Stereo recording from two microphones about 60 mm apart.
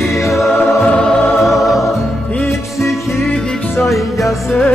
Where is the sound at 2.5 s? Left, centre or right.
Left.